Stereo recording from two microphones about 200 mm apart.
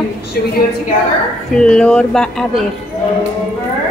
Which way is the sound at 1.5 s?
5° left (ahead or behind).